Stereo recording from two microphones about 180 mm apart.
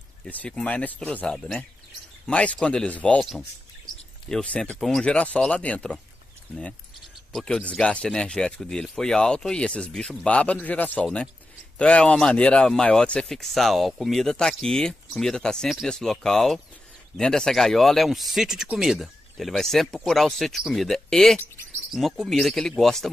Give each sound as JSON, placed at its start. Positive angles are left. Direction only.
{"t": 0.2, "sound": "speech", "side_deg": 5}
{"t": 7.3, "sound": "speech", "side_deg": 5}